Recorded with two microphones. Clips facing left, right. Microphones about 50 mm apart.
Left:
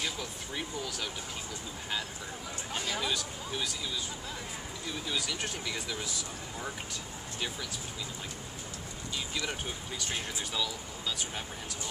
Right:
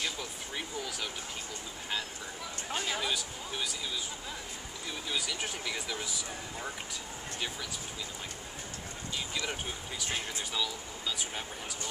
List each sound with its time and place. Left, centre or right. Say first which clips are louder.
0.0 s vehicle: even; centre
3.0 s speech: left 1 dB; centre
5.0 s speech: even; centre
9.5 s speech: even; centre